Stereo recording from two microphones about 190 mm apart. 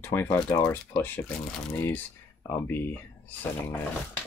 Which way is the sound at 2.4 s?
10° left (ahead or behind).